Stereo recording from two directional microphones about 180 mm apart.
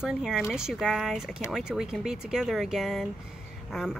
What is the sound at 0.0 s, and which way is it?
Speech, 5° right (ahead or behind).